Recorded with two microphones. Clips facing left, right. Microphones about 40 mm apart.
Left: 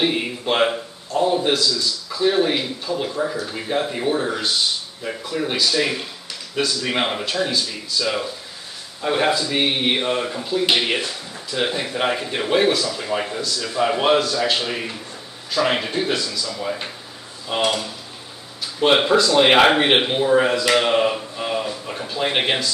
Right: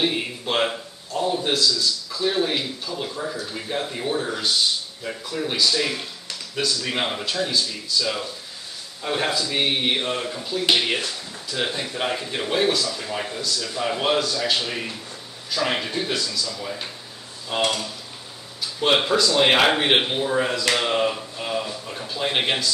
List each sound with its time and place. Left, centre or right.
0.0 s a man's voice: centre